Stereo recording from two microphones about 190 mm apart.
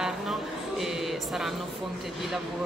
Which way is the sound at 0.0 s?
Centre (ahead or behind).